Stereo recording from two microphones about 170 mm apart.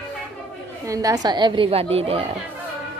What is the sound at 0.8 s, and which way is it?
A woman's voice, 20° right (ahead or behind).